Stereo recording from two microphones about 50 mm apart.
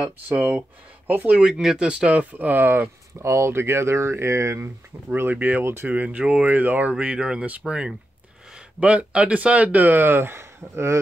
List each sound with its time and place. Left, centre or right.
0.3 s speech: right
1.3 s speech: centre; by 2.9 s right
3.2 s speech: right
4.9 s speech: right
5.3 s speech: right
5.6 s speech: right
6.0 s speech: right